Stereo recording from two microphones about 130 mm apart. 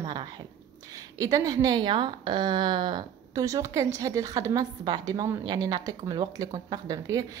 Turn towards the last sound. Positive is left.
turn(degrees=-30)  # may be behind; listen again after turning